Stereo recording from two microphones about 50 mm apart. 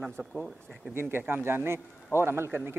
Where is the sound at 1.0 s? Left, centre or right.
Right.